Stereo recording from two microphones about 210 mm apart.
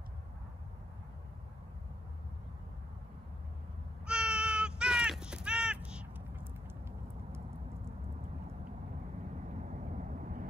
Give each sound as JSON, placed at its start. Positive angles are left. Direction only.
{"t": 4.0, "sound": "crow", "side_deg": -5}
{"t": 9.6, "sound": "vehicle", "side_deg": -35}